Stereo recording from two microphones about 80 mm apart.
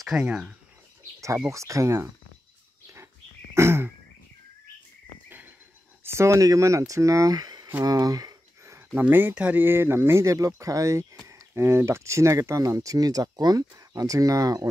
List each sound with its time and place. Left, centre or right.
0.2 s speech: centre
1.5 s speech: right
3.5 s throat clearing: right
6.0 s speech: right
8.9 s speech: right